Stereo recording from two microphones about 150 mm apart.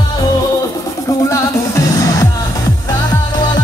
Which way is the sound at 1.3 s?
20° left (ahead or behind).